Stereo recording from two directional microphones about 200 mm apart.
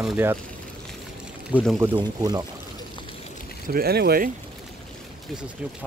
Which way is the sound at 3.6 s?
50° right (ahead or behind).